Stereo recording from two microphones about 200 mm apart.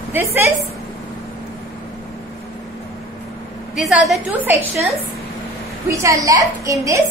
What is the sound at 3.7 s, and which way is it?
A woman's voice, centre (ahead or behind).